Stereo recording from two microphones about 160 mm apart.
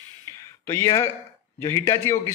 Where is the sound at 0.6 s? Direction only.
20° left (ahead or behind).